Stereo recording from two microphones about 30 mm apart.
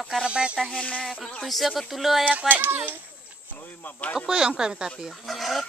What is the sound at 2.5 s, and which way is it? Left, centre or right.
Speech, right.